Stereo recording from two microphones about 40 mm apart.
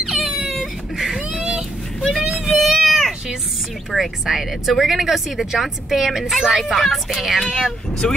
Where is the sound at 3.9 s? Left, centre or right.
Centre.